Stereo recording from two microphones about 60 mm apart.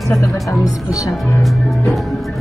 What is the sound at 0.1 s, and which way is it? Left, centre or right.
Speech, left.